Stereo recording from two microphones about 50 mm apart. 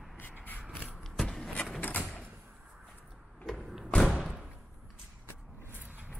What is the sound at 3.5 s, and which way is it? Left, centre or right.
Thump, centre.